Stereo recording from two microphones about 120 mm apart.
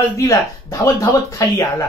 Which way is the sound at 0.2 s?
25° left (ahead or behind).